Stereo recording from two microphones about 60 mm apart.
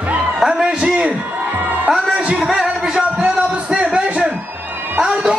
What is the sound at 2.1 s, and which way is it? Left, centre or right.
Music, centre.